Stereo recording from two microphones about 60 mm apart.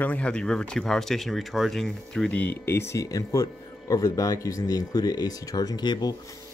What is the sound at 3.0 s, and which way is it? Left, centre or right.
Speech, left.